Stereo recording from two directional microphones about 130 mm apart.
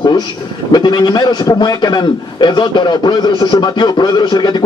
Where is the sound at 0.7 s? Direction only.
35° left (ahead or behind).